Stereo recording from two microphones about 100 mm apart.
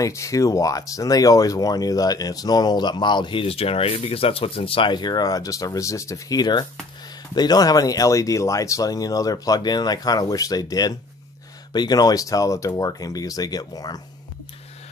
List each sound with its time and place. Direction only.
0.0 s speech: 30° left (ahead or behind)